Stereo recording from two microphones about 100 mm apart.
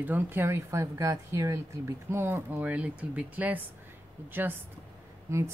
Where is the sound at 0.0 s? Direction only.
20° right (ahead or behind).